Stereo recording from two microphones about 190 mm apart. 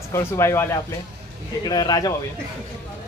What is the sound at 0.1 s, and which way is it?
Speech, 15° left (ahead or behind).